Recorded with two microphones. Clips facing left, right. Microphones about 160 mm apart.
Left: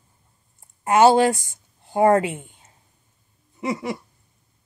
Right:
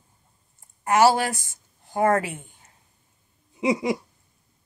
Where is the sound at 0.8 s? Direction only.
25° left (ahead or behind).